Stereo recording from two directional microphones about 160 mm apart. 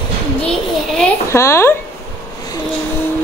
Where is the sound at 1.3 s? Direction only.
15° left (ahead or behind).